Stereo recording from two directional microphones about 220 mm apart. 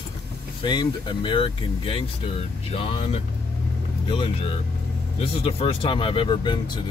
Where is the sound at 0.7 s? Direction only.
20° left (ahead or behind).